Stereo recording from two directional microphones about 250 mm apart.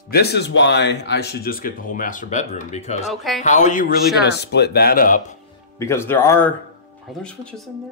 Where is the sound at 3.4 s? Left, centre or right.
Left.